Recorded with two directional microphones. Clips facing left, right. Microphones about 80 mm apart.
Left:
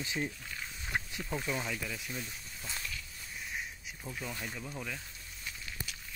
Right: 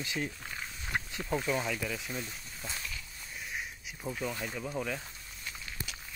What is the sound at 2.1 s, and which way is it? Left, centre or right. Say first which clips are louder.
Speech: right 2 dB; centre.